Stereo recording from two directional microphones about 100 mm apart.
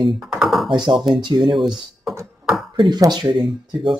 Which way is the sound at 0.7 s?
50° right (ahead or behind).